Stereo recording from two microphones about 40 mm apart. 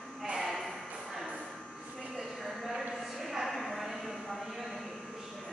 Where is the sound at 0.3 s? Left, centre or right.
Centre.